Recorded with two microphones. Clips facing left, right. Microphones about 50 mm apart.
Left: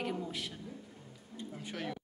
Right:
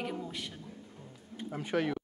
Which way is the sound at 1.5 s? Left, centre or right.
Right.